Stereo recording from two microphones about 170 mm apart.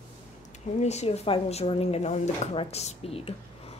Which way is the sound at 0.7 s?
40° left (ahead or behind).